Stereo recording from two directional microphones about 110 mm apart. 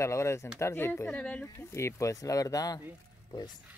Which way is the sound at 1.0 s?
10° left (ahead or behind).